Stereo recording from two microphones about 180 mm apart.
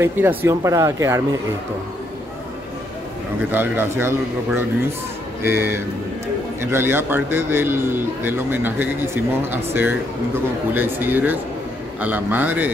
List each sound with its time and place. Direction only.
0.0 s a man's voice: 10° right (ahead or behind)
3.5 s a man's voice: 10° right (ahead or behind)
5.4 s a man's voice: 10° right (ahead or behind)